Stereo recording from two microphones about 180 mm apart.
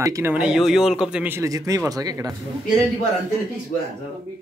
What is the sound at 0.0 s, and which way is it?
Speech, 15° right (ahead or behind).